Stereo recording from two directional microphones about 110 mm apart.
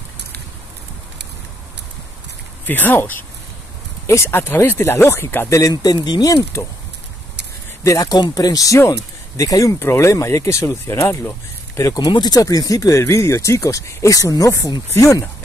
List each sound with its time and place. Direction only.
2.6 s speech: 15° left (ahead or behind); by 6.6 s 35° left (ahead or behind)
7.8 s speech: 30° left (ahead or behind)
12.0 s speech: 40° left (ahead or behind)